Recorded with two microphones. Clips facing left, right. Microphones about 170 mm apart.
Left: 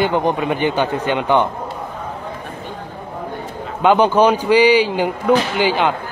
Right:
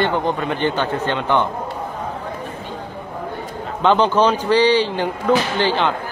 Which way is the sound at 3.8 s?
10° left (ahead or behind).